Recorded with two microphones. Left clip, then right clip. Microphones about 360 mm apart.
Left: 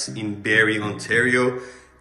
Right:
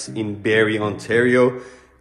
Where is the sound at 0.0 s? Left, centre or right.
Centre.